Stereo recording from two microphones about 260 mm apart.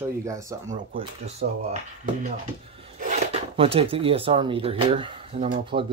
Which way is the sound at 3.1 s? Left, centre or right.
Right.